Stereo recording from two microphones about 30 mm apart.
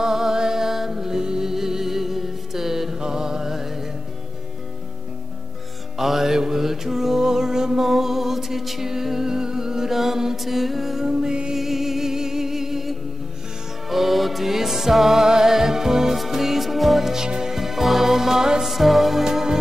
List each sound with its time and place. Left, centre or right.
0.0 s music: centre
5.9 s mantra: centre
7.8 s music: centre
11.5 s music: centre
17.3 s music: centre
17.6 s music: centre